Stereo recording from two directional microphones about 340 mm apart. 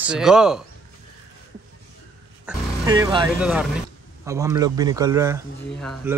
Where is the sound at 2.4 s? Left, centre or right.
Centre.